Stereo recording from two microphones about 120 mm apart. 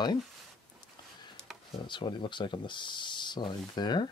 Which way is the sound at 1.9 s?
40° left (ahead or behind).